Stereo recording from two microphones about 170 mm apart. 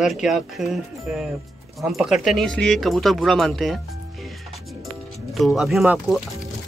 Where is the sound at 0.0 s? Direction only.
Centre (ahead or behind).